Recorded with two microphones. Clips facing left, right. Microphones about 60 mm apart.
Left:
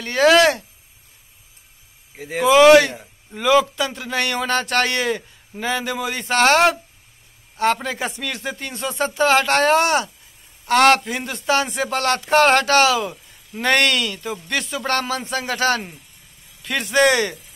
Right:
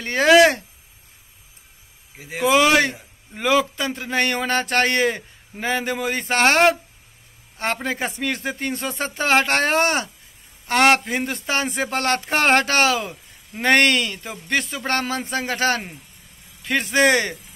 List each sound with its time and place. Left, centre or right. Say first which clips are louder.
0.0 s speech: even; right
2.1 s speech: left 4 dB; centre
2.8 s speech: even; right